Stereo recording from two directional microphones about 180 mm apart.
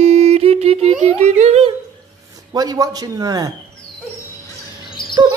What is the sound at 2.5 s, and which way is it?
A man's voice, 20° right (ahead or behind).